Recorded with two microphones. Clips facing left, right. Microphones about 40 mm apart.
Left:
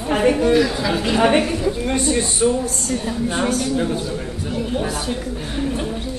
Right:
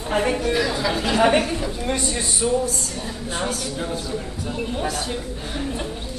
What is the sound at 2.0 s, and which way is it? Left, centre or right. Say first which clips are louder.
A man's voice: left 6 dB; left.